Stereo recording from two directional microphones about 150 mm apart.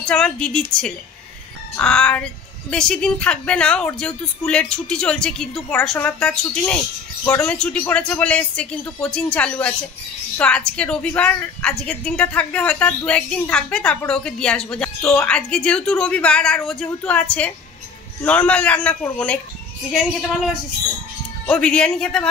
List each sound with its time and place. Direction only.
0.0 s a woman's voice: 5° left (ahead or behind)
15.0 s a woman's voice: 20° left (ahead or behind)
15.2 s a woman's voice: 5° left (ahead or behind)
19.9 s speech: 5° right (ahead or behind)
21.5 s a woman's voice: 5° left (ahead or behind)